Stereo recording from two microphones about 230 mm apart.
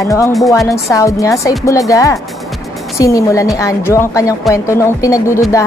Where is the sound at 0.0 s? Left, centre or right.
Centre.